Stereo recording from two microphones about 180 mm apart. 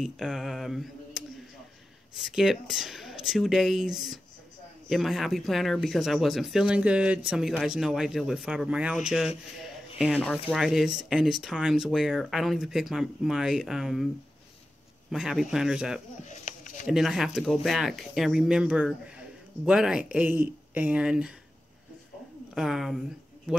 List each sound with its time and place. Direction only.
0.0 s speech: centre (ahead or behind)
15.0 s speech: centre (ahead or behind)
16.3 s a sound: 45° left (ahead or behind)
16.8 s speech: centre (ahead or behind)
22.5 s speech: centre (ahead or behind)